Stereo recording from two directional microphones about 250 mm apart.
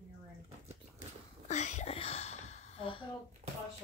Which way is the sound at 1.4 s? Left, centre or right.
Left.